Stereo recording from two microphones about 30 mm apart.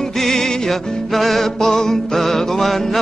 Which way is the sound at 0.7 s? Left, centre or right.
Centre.